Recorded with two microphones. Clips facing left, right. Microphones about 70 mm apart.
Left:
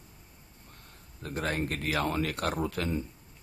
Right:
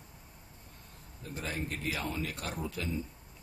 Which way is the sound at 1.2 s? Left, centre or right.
Left.